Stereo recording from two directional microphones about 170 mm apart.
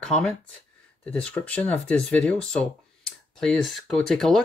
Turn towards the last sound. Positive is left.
turn(degrees=0)  # may be behind; listen again after turning